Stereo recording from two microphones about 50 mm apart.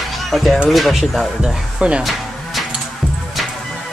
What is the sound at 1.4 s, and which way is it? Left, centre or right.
Speech, right.